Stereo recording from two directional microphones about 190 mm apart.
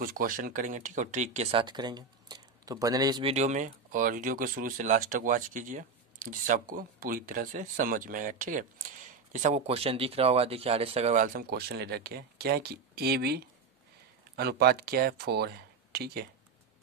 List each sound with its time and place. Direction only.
0.0 s speech: 50° right (ahead or behind); by 3.3 s 25° right (ahead or behind)
3.3 s speech: 40° right (ahead or behind); by 16.3 s 55° right (ahead or behind)